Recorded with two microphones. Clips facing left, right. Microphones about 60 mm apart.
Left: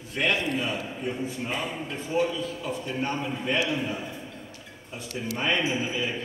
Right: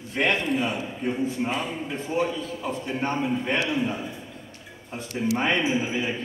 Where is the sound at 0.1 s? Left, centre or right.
Right.